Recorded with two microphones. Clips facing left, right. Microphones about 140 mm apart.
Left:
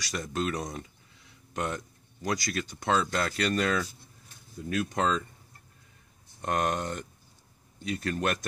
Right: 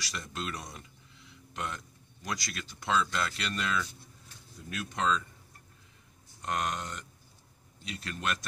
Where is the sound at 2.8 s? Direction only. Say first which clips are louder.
Left 2 dB; 45° left (ahead or behind).